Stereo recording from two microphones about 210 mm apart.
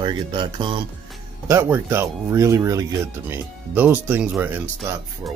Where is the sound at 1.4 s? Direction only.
10° right (ahead or behind).